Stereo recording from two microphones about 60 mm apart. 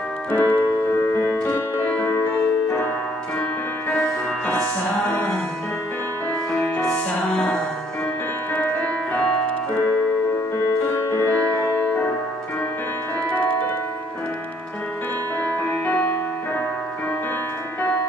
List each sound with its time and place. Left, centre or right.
0.3 s piano: left
0.9 s music: left
3.9 s music: left
6.5 s music: centre
8.6 s music: left
10.7 s music: left
11.3 s music: left